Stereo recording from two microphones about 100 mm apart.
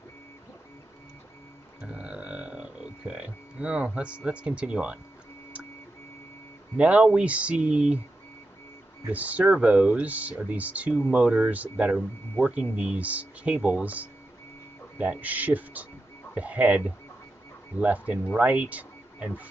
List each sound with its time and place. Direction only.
1.8 s music: 10° right (ahead or behind)
6.8 s speech: 10° right (ahead or behind)
9.1 s speech: 15° right (ahead or behind)